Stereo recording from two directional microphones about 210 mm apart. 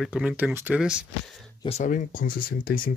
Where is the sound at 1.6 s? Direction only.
30° left (ahead or behind).